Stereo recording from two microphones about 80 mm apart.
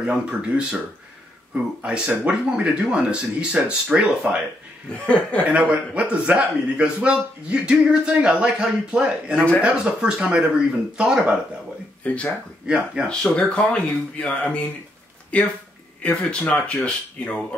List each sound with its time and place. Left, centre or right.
0.0 s speech: centre
5.0 s speech: centre
5.4 s speech: centre
12.1 s speech: centre
12.6 s speech: centre
13.0 s speech: centre